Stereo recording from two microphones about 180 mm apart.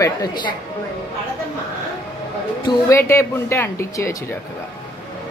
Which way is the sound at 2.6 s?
20° left (ahead or behind).